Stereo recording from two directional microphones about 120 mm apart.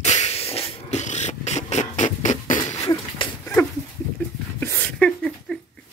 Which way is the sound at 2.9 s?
40° left (ahead or behind).